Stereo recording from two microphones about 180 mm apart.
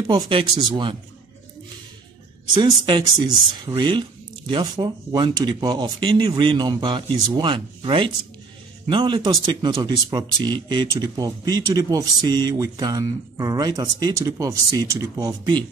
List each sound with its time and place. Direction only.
0.0 s speech: 25° right (ahead or behind)
2.5 s speech: 25° right (ahead or behind)